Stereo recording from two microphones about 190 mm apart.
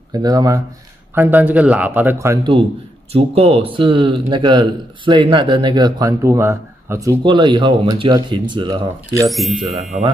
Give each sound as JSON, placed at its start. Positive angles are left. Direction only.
{"t": 0.1, "sound": "speech", "side_deg": -20}
{"t": 3.1, "sound": "speech", "side_deg": -30}
{"t": 9.3, "sound": "speech", "side_deg": 0}